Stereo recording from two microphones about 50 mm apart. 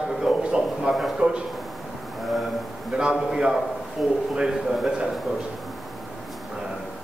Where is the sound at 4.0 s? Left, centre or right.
Centre.